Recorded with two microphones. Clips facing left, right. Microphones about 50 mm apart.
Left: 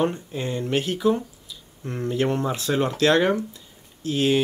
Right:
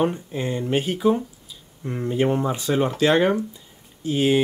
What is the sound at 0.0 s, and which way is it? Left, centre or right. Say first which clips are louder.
Speech: right 1 dB; centre.